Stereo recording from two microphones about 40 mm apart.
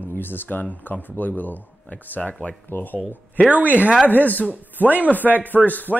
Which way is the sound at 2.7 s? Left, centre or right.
Left.